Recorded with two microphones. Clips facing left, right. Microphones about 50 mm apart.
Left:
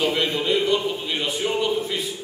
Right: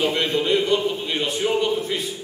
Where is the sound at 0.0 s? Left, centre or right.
Centre.